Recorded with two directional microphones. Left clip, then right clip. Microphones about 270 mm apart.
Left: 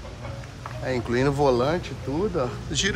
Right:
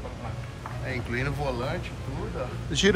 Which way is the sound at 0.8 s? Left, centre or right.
Centre.